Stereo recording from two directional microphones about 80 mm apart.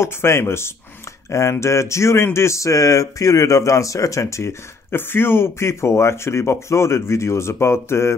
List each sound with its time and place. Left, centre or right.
0.0 s speech: left